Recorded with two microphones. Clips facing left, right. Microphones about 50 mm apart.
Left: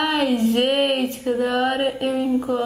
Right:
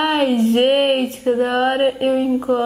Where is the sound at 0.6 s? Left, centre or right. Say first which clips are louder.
Right 4 dB; right.